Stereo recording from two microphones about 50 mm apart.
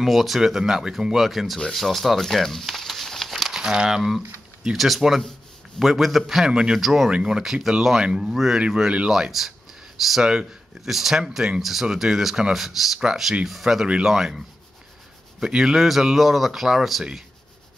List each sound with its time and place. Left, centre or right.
0.0 s speech: centre
1.7 s crumpling: centre
3.5 s speech: centre
6.5 s speech: centre
15.4 s speech: centre